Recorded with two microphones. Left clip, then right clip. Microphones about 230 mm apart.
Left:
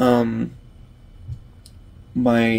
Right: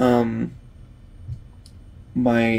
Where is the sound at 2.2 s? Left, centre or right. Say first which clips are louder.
Left 1 dB; centre.